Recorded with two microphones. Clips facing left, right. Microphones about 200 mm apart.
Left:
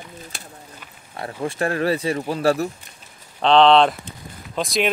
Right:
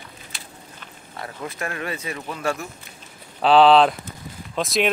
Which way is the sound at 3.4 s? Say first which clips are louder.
Even; 5° right (ahead or behind).